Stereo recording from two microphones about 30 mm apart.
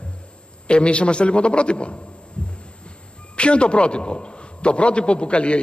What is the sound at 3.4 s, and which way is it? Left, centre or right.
A man's voice, left.